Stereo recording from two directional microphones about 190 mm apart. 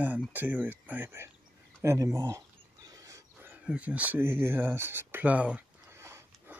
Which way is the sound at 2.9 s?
15° right (ahead or behind).